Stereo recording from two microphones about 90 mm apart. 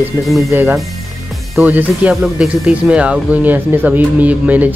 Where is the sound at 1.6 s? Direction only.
20° right (ahead or behind).